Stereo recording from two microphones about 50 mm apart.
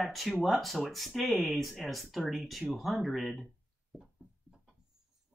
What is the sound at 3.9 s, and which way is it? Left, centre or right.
Music, centre.